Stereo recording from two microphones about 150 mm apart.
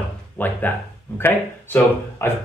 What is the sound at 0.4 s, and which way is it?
A man's voice, 10° left (ahead or behind).